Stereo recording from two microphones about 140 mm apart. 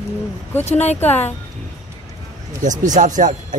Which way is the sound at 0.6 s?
50° left (ahead or behind).